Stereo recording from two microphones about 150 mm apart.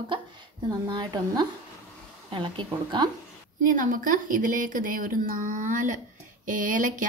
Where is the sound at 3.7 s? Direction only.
60° right (ahead or behind).